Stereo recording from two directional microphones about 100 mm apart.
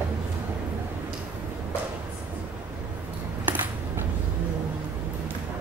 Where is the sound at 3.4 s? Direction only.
20° right (ahead or behind).